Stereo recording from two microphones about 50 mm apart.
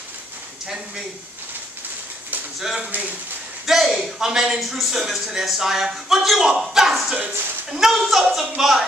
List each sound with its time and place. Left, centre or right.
2.6 s speech: centre
2.9 s speech: right
3.6 s speech: centre